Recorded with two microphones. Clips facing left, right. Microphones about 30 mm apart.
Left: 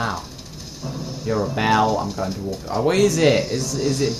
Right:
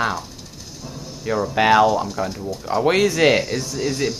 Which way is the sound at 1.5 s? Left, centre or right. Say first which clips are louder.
Right 5 dB; right.